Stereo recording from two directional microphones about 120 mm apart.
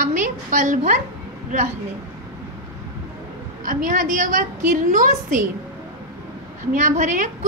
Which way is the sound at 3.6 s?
90° right.